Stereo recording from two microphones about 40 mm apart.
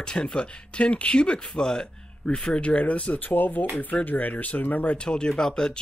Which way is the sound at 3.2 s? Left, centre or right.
Left.